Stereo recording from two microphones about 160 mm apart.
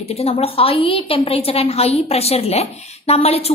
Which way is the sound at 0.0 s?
40° left (ahead or behind).